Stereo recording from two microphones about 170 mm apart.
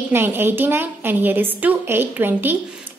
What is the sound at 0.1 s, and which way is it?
A woman's voice, 10° right (ahead or behind).